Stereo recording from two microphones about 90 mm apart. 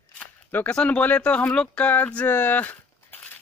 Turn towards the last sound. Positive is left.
turn(degrees=20)  # may be behind; listen again after turning